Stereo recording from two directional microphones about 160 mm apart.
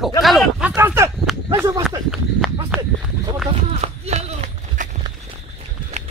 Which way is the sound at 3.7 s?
40° right (ahead or behind).